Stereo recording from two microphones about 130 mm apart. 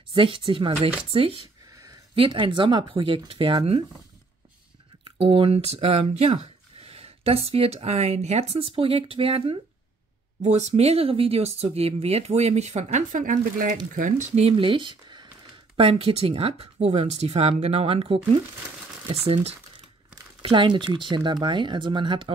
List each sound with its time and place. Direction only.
0.1 s speech: 45° right (ahead or behind)
5.1 s speech: 45° right (ahead or behind)
10.4 s speech: 60° right (ahead or behind); by 13.7 s 90° right
13.9 s speech: 80° right; by 19.5 s 50° right (ahead or behind)
20.4 s speech: 40° right (ahead or behind)